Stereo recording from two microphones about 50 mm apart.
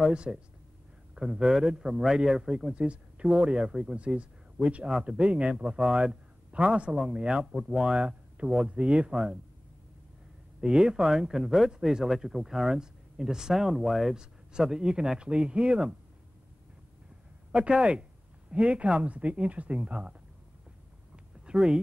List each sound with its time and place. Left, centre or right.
0.3 s speech: centre
1.2 s a sound: right
1.5 s speech: centre
10.6 s speech: centre
17.5 s speech: right
21.5 s speech: centre